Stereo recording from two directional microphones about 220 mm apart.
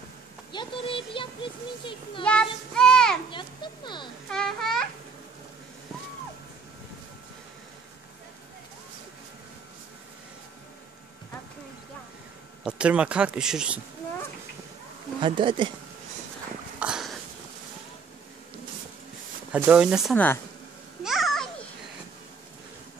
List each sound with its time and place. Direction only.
0.5 s a child's voice: 20° left (ahead or behind)
2.2 s speech: 5° left (ahead or behind)
3.3 s a child's voice: 20° left (ahead or behind)
4.3 s speech: centre (ahead or behind)
12.6 s speech: 5° right (ahead or behind)
15.1 s speech: 20° right (ahead or behind)
16.8 s a sound: centre (ahead or behind)
19.5 s speech: 5° right (ahead or behind)
21.0 s a sound: centre (ahead or behind)